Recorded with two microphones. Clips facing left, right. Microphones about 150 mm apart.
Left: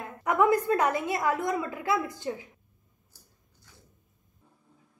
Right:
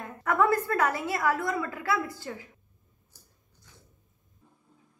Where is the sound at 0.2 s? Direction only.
15° left (ahead or behind).